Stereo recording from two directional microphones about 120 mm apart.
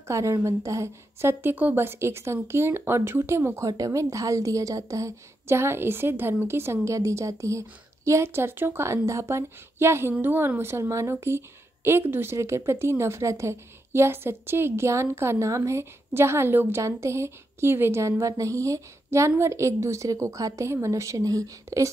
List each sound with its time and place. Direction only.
0.1 s a woman's voice: 25° right (ahead or behind)